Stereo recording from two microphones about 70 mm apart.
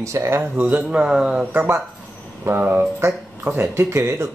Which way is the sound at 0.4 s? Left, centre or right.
Right.